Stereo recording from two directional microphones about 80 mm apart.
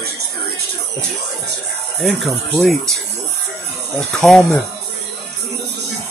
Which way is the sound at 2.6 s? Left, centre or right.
Centre.